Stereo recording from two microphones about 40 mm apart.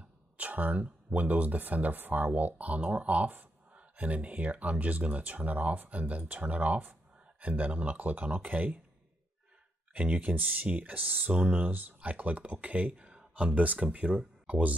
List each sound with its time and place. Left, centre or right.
0.0 s speech: right
9.9 s speech: right
12.9 s a sound: centre
13.3 s speech: right